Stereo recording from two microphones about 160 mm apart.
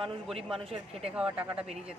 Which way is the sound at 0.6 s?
40° right (ahead or behind).